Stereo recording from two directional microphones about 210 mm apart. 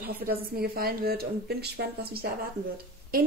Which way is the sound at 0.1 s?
45° right (ahead or behind).